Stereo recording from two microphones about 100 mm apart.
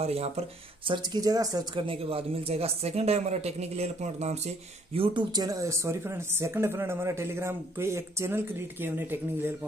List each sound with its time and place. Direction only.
0.0 s speech: 90° right
0.9 s speech: 40° right (ahead or behind)
1.8 s speech: 65° right (ahead or behind); by 4.4 s 90° right
4.9 s speech: 65° right (ahead or behind)
5.3 s speech: 40° right (ahead or behind); by 9.5 s 20° right (ahead or behind)